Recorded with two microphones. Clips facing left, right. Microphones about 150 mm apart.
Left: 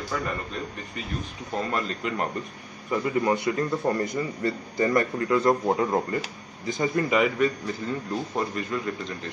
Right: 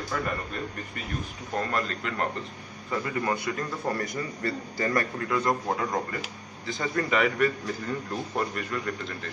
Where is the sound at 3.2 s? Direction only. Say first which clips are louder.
Left 5 dB; 20° left (ahead or behind).